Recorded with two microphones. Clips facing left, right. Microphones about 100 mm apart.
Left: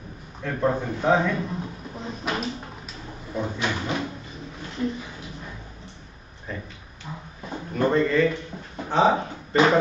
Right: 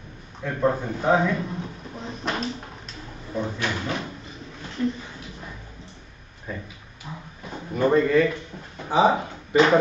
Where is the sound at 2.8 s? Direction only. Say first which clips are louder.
Left 1 dB; 5° left (ahead or behind).